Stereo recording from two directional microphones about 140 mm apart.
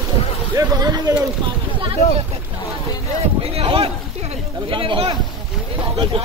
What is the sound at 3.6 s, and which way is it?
Speech, 45° right (ahead or behind).